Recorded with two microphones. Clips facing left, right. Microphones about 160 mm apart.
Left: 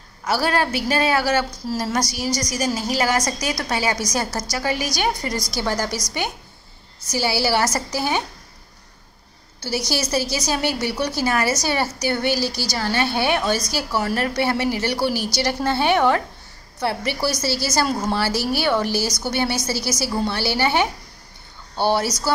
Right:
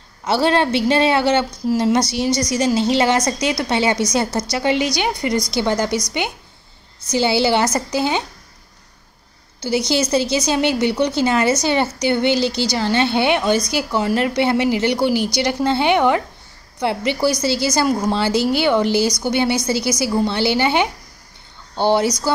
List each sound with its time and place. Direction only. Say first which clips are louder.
0.2 s a woman's voice: right 4 dB; 25° right (ahead or behind)
7.1 s a woman's voice: right 5 dB; 20° right (ahead or behind)
9.6 s a woman's voice: right 6 dB; 20° right (ahead or behind)